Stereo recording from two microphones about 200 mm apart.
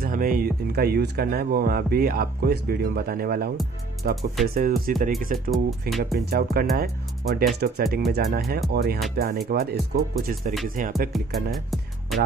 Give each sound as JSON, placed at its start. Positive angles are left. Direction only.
{"t": 0.0, "sound": "speech", "side_deg": -45}
{"t": 5.5, "sound": "speech", "side_deg": 0}
{"t": 6.1, "sound": "speech", "side_deg": -50}
{"t": 10.8, "sound": "music", "side_deg": -40}
{"t": 11.1, "sound": "speech", "side_deg": 0}
{"t": 11.5, "sound": "music", "side_deg": 0}